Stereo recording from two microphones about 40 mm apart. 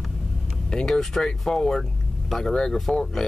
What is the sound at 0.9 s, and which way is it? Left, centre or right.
Speech, centre.